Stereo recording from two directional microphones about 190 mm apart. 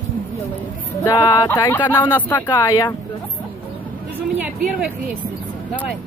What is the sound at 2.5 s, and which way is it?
Speech, 20° left (ahead or behind).